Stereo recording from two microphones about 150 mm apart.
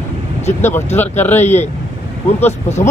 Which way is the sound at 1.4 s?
50° left (ahead or behind).